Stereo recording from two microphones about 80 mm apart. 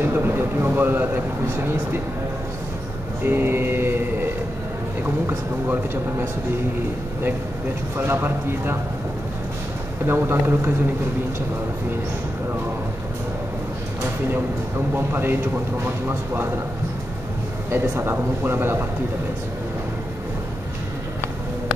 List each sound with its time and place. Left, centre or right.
0.0 s speech: right
3.3 s mantra: right
5.0 s speech: right
8.0 s speech: right
10.0 s speech: right
15.0 s speech: right
17.6 s speech: right